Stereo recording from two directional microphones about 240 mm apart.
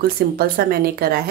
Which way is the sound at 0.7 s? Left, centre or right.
Right.